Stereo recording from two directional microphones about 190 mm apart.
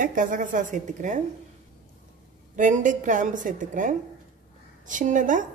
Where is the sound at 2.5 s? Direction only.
40° right (ahead or behind).